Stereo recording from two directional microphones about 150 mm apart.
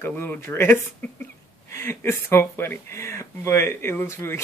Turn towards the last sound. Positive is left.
turn(degrees=15)  # may be behind; listen again after turning